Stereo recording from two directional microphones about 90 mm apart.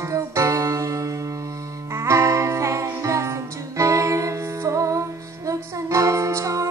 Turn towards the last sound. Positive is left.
turn(degrees=-35)  # may be behind; listen again after turning